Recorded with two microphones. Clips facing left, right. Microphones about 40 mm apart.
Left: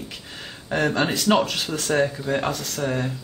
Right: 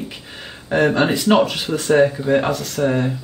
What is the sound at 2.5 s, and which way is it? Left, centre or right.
Speech, centre.